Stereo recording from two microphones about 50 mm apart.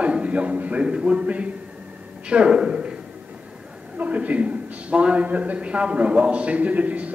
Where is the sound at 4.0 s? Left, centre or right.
Right.